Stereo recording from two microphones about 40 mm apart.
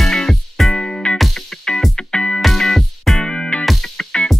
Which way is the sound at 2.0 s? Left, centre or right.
Left.